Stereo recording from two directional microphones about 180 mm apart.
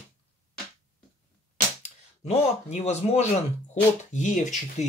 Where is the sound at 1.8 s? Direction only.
35° left (ahead or behind).